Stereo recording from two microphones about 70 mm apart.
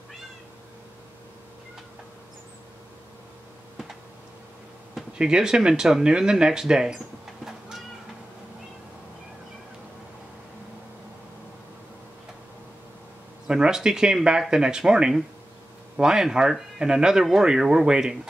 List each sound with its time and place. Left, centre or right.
4.9 s speech: centre
13.5 s speech: centre